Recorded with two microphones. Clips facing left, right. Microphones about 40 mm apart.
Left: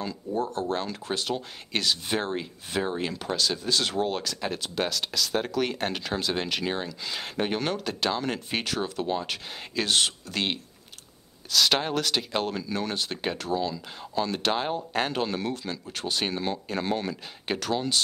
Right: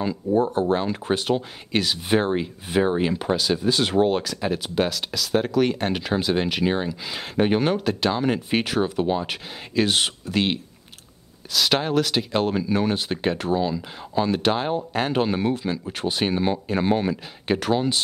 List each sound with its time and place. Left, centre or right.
0.0 s speech: centre
1.7 s speech: centre
4.2 s speech: centre
15.1 s speech: centre